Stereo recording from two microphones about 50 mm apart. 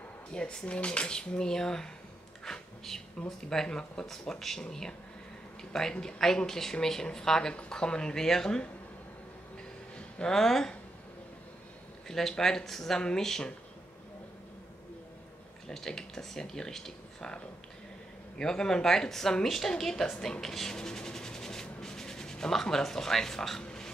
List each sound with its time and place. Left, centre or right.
0.3 s speech: centre
2.4 s a sound: centre
3.3 s speech: centre
9.9 s a sound: left
10.3 s speech: centre
12.1 s speech: centre
15.7 s speech: centre
18.4 s speech: centre
23.6 s a sound: centre